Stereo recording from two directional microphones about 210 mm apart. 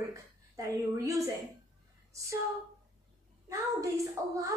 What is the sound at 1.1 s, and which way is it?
A woman's voice, 15° right (ahead or behind).